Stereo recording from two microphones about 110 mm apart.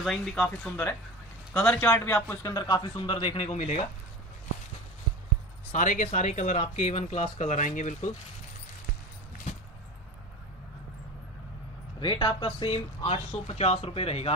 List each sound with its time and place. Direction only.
0.0 s a man's voice: 5° left (ahead or behind); by 2.5 s 20° left (ahead or behind)
2.5 s speech: 40° left (ahead or behind); by 3.5 s 55° left (ahead or behind)
3.5 s speech: 70° left (ahead or behind)
5.7 s speech: 90° left
12.0 s speech: 50° left (ahead or behind); by 14.3 s 65° left (ahead or behind)